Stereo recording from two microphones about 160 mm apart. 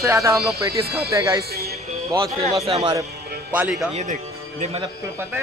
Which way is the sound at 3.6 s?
5° right (ahead or behind).